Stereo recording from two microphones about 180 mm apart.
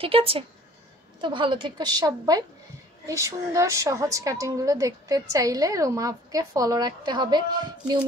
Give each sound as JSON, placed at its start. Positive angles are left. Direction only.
{"t": 0.0, "sound": "a woman's voice", "side_deg": -30}